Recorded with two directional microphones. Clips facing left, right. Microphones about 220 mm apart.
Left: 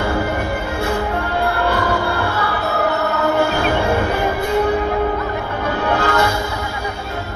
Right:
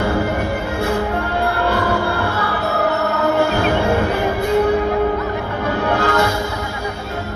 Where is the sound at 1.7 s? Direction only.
40° right (ahead or behind).